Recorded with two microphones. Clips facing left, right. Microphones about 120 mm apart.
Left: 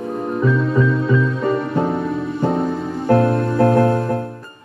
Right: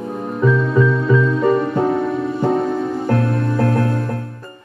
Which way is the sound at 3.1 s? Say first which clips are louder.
Left 6 dB; 25° left (ahead or behind).